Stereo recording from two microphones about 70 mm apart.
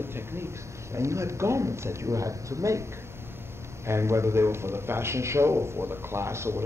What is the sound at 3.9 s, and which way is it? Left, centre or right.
A man's voice, right.